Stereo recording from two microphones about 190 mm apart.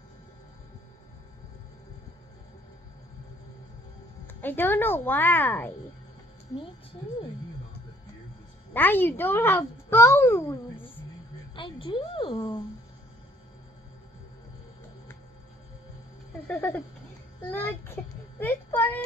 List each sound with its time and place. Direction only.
4.3 s a child's voice: 10° left (ahead or behind)
8.7 s a child's voice: 10° left (ahead or behind)
11.5 s a woman's voice: 25° left (ahead or behind)
16.4 s a child's voice: 10° left (ahead or behind)